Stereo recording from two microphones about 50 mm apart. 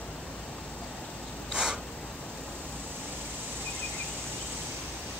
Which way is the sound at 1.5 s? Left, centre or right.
Centre.